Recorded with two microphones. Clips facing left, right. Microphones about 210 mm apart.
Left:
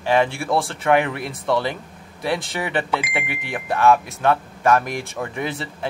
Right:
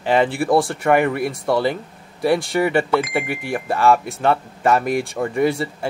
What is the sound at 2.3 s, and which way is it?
Speech, centre (ahead or behind).